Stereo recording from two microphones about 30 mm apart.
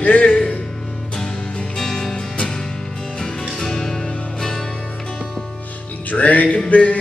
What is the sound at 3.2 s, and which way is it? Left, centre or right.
Music, centre.